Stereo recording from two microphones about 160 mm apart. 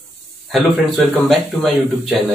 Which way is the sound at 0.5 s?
Centre (ahead or behind).